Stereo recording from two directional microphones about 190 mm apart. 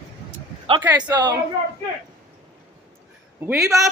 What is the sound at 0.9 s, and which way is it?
Speech, 25° right (ahead or behind).